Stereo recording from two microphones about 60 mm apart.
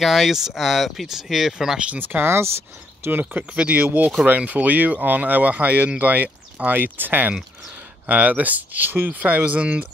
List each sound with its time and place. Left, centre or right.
0.0 s speech: centre
1.8 s speech: right
2.0 s speech: right